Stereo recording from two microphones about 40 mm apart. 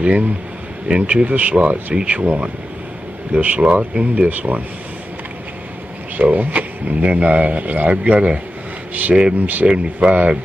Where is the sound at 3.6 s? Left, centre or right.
Right.